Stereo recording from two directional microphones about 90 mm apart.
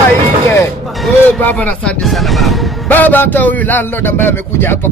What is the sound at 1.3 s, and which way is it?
Speech, 15° left (ahead or behind).